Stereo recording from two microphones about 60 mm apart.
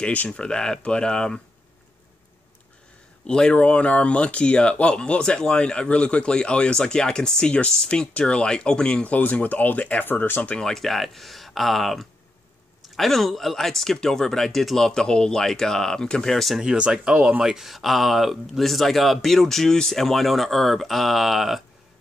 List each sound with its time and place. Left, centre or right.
0.0 s speech: left
0.3 s speech: centre
3.3 s speech: centre; by 10.5 s left
10.5 s speech: centre
16.6 s speech: centre